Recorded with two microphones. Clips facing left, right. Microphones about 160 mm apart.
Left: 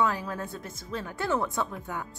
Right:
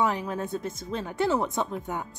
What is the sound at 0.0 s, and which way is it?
Speech, 20° right (ahead or behind).